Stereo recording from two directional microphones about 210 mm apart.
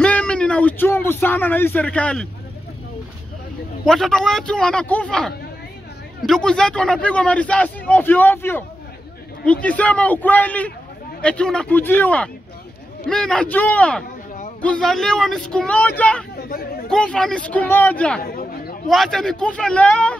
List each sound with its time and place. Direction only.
0.0 s speech: 5° left (ahead or behind)
3.8 s a man's voice: centre (ahead or behind)
16.3 s chatter: 45° left (ahead or behind)
16.9 s a man's voice: 5° left (ahead or behind)
18.2 s chatter: 45° left (ahead or behind)
18.9 s a man's voice: centre (ahead or behind)